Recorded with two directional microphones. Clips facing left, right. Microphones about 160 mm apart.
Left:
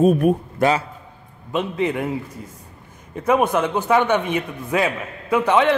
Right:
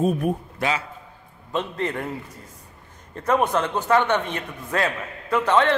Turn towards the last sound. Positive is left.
turn(degrees=10)  # may be behind; listen again after turning